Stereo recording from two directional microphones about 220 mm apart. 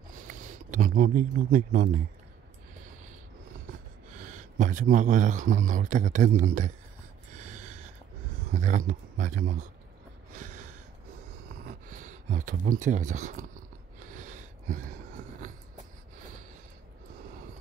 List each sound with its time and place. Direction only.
0.1 s speech: 35° right (ahead or behind)
4.2 s speech: 35° right (ahead or behind)
7.3 s gasp: 35° right (ahead or behind)
8.5 s speech: 35° right (ahead or behind)
10.3 s a sound: 35° right (ahead or behind)
11.6 s speech: 35° right (ahead or behind)
14.0 s a sound: 35° right (ahead or behind)